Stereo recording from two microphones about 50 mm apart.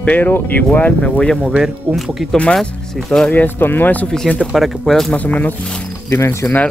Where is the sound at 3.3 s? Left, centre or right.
Left.